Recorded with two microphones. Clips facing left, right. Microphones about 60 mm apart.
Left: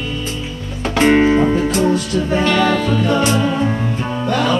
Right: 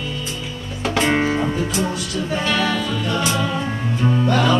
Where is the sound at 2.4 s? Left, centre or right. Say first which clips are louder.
Left 4 dB; left.